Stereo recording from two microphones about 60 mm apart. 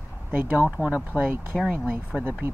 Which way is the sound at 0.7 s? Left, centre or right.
Centre.